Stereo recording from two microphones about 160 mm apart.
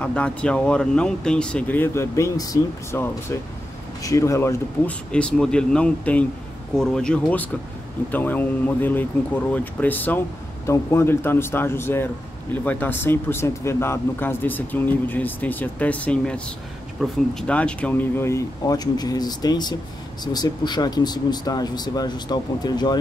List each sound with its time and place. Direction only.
0.0 s speech: 5° left (ahead or behind); by 22.9 s 25° left (ahead or behind)